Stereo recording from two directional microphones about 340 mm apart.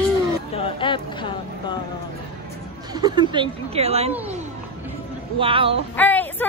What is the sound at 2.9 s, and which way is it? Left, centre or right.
Speech, centre.